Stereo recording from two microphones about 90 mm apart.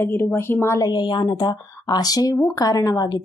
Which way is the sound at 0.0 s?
25° left (ahead or behind).